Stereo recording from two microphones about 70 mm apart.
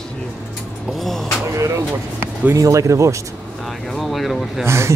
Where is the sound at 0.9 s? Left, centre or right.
Centre.